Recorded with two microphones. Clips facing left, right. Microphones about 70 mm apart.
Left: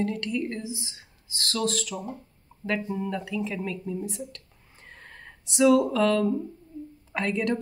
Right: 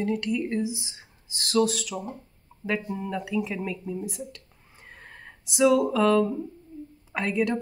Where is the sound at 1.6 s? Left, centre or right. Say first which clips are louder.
Even; centre.